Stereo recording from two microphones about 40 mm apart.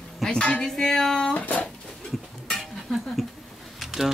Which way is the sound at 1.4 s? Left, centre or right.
Left.